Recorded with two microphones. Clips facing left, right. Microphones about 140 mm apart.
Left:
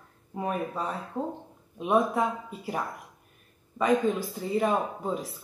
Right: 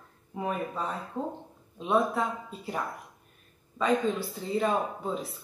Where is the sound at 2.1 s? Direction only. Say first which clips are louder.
Left 3 dB; 10° left (ahead or behind).